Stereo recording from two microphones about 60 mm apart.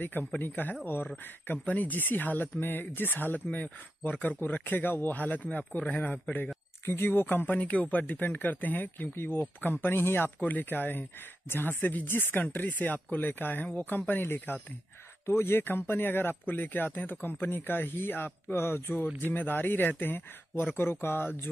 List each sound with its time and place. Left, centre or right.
0.0 s speech: left
6.9 s speech: left